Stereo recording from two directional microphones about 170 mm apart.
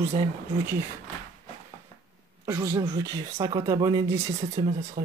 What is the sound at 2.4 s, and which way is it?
Speech, 15° right (ahead or behind).